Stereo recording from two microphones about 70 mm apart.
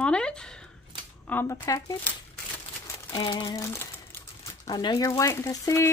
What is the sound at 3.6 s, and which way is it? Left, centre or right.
Speech, left.